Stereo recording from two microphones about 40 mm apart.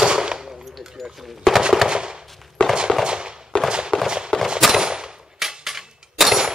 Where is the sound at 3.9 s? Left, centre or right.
Left.